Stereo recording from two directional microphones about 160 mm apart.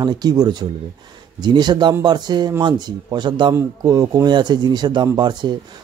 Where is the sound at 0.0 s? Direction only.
25° right (ahead or behind).